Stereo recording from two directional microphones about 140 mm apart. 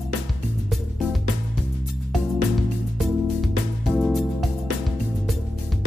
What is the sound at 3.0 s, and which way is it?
Music, centre (ahead or behind).